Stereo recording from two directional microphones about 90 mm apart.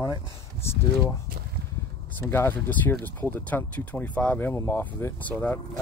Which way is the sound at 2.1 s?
25° left (ahead or behind).